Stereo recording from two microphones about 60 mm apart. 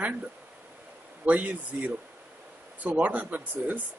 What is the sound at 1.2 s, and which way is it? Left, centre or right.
Speech, right.